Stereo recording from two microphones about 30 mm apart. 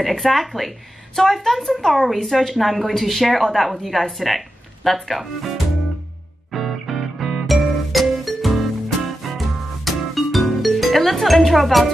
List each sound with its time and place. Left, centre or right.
0.1 s speech: centre
6.5 s music: centre